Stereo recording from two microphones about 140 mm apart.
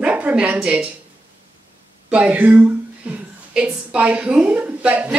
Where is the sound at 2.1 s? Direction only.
10° right (ahead or behind).